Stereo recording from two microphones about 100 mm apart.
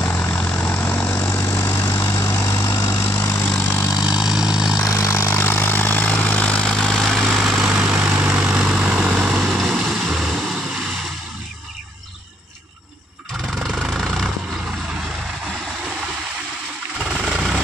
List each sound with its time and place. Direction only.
0.0 s vehicle: 10° left (ahead or behind)
2.7 s vehicle: 40° left (ahead or behind)
3.0 s vehicle: 20° left (ahead or behind); by 4.1 s 40° left (ahead or behind)
4.1 s vehicle: 5° right (ahead or behind)
4.8 s vehicle: 35° left (ahead or behind); by 10.6 s centre (ahead or behind)
13.8 s vehicle: centre (ahead or behind)
17.0 s vehicle: 10° right (ahead or behind)